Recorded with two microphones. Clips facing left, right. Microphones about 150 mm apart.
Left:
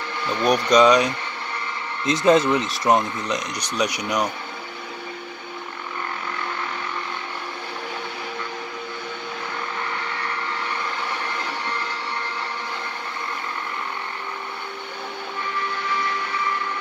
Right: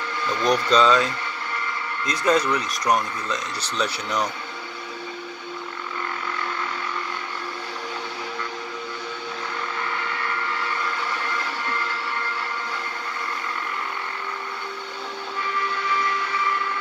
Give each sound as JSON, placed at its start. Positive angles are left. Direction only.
{"t": 0.4, "sound": "speech", "side_deg": 15}